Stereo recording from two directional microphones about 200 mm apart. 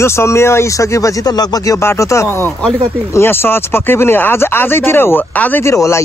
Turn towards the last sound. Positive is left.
turn(degrees=15)  # may be behind; listen again after turning